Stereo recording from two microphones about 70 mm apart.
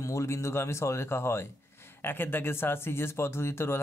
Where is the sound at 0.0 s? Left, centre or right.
Left.